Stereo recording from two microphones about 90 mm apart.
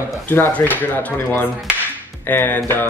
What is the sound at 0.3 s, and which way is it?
Speech, 20° left (ahead or behind).